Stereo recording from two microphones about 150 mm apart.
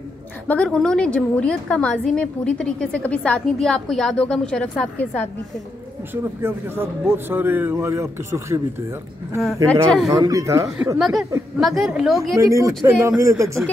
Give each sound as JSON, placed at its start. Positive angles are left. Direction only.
{"t": 0.5, "sound": "a woman's voice", "side_deg": 5}
{"t": 6.4, "sound": "speech", "side_deg": -15}
{"t": 9.7, "sound": "a woman's voice", "side_deg": 0}
{"t": 10.1, "sound": "speech", "side_deg": -20}
{"t": 11.0, "sound": "a woman's voice", "side_deg": 0}
{"t": 12.4, "sound": "speech", "side_deg": -20}